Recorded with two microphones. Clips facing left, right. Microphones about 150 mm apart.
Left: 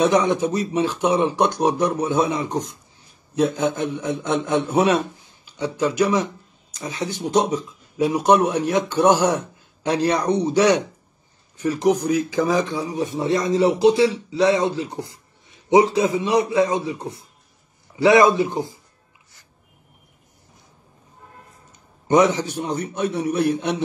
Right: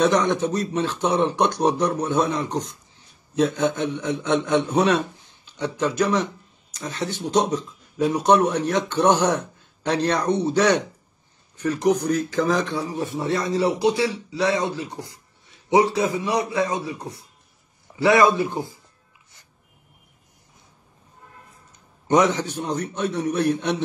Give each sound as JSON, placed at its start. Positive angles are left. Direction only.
{"t": 0.0, "sound": "a man's voice", "side_deg": 10}
{"t": 22.0, "sound": "speech", "side_deg": 10}